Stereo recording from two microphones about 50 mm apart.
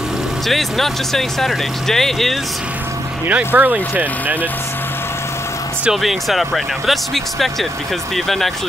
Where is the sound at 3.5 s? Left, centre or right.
Right.